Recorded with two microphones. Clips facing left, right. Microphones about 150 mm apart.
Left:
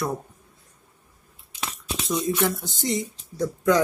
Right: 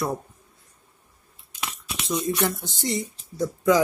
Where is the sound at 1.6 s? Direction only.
30° left (ahead or behind).